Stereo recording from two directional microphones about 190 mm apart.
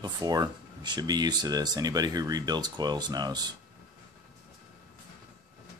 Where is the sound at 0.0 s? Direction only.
20° right (ahead or behind).